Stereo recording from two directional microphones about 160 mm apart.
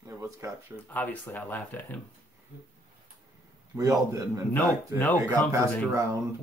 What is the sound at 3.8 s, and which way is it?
Speech, 20° right (ahead or behind).